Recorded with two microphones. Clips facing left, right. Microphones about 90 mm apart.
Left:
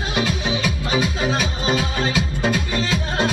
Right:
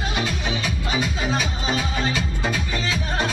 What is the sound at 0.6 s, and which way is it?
Music, 20° left (ahead or behind).